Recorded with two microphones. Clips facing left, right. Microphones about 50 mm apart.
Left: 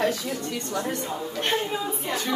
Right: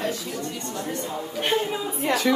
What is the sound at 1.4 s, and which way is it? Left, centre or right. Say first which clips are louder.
Speech: right 2 dB; centre.